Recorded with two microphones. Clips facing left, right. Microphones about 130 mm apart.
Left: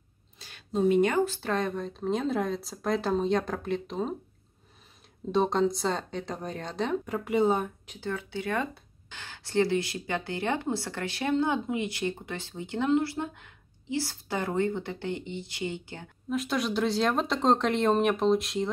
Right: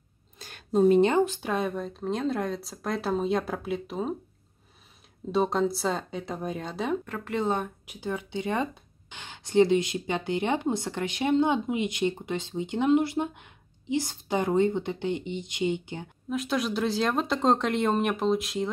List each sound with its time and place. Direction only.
0.4 s speech: 50° right (ahead or behind); by 4.1 s 5° right (ahead or behind)
5.3 s speech: 5° right (ahead or behind)
7.1 s speech: 10° left (ahead or behind)
7.8 s speech: 10° right (ahead or behind)
16.3 s speech: centre (ahead or behind)